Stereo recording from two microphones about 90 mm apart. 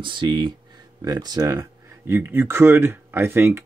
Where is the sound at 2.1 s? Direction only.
25° right (ahead or behind).